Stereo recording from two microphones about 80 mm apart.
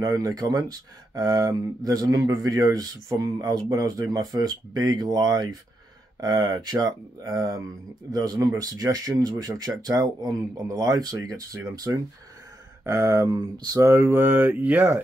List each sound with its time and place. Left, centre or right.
0.0 s speech: right
13.4 s speech: right
13.9 s mantra: right